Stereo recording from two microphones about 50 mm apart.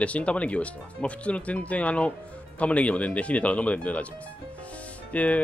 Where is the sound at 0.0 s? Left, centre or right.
Left.